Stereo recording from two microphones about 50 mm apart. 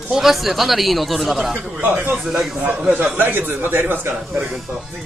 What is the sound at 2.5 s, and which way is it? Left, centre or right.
Speech, right.